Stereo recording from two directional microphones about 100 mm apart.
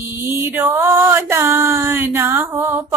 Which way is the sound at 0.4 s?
20° right (ahead or behind).